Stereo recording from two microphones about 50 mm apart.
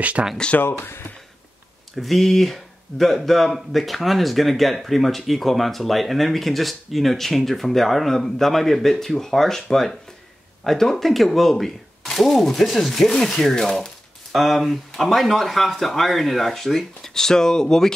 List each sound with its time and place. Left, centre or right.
0.2 s speech: right
0.6 s speech: left
2.0 s speech: centre